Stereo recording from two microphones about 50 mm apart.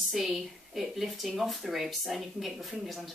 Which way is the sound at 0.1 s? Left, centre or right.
Centre.